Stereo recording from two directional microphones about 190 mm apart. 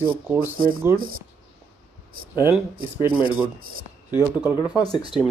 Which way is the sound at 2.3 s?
10° right (ahead or behind).